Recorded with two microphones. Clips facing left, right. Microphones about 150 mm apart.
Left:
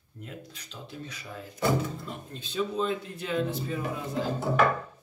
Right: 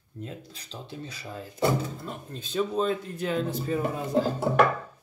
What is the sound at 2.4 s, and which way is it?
Speech, 45° right (ahead or behind).